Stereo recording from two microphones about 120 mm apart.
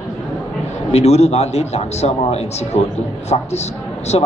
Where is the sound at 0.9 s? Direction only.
65° left (ahead or behind).